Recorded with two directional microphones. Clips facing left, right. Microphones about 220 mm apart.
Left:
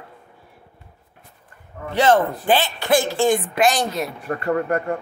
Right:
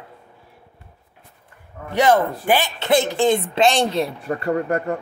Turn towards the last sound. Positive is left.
turn(degrees=-30)  # may be behind; listen again after turning